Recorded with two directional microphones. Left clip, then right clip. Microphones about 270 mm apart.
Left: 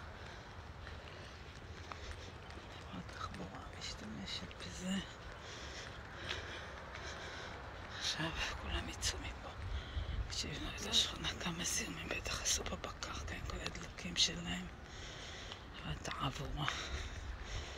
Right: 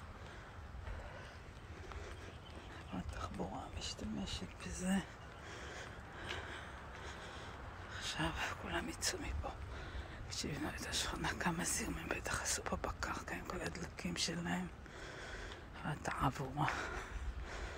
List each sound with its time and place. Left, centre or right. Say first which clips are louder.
4.6 s speech: right 5 dB; centre
5.8 s vehicle: left 1 dB; centre
7.9 s speech: left 1 dB; centre
10.3 s speech: even; centre
16.1 s speech: right 3 dB; centre